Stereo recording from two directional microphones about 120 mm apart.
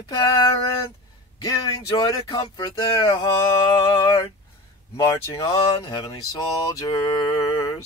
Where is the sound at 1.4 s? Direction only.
30° left (ahead or behind).